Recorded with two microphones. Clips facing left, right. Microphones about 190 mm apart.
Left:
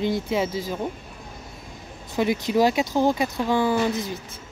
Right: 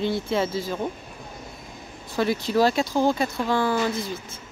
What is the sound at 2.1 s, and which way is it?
Speech, 15° left (ahead or behind).